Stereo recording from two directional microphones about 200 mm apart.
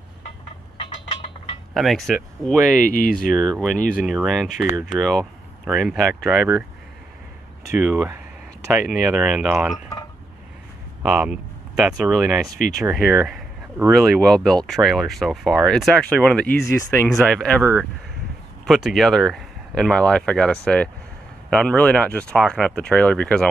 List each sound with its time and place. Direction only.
0.7 s mechanisms: 30° left (ahead or behind)
1.7 s speech: centre (ahead or behind)
2.8 s speech: 45° left (ahead or behind)
3.3 s speech: 5° left (ahead or behind)
3.7 s speech: 40° left (ahead or behind)
4.0 s speech: centre (ahead or behind)
4.6 s speech: 20° right (ahead or behind)
5.7 s speech: centre (ahead or behind)
7.8 s speech: 5° right (ahead or behind)
11.0 s speech: 5° right (ahead or behind)
12.9 s a sound: 5° right (ahead or behind)
13.8 s speech: centre (ahead or behind)
18.7 s speech: centre (ahead or behind)